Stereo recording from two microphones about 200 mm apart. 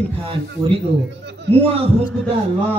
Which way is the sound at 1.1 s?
60° right (ahead or behind).